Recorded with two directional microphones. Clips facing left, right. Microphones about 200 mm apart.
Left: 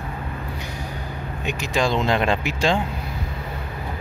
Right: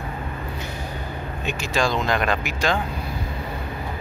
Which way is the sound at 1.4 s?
15° left (ahead or behind).